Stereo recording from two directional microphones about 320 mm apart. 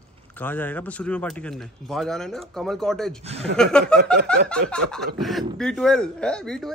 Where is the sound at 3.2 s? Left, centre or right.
Centre.